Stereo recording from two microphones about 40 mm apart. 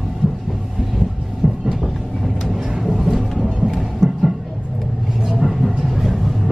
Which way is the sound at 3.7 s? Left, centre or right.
Centre.